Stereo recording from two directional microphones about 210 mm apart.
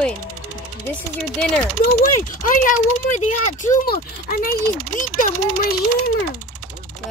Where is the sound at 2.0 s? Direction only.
40° left (ahead or behind).